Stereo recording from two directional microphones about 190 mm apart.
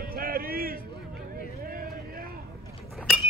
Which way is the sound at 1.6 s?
50° right (ahead or behind).